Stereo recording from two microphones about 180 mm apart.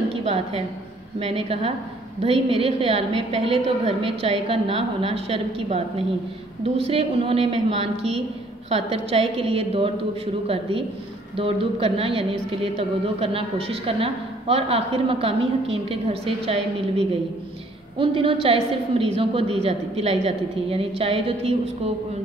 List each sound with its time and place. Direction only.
0.2 s a woman's voice: 35° right (ahead or behind)
17.9 s a woman's voice: 30° right (ahead or behind)